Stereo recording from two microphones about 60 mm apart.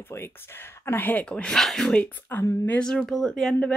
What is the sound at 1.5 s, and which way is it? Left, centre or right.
Speech, centre.